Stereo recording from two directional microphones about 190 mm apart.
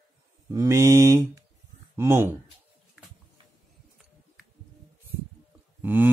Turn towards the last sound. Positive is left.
turn(degrees=-10)  # may be behind; listen again after turning